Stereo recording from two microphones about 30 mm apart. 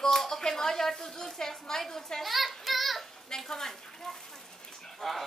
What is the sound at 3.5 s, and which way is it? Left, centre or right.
A woman's voice, centre.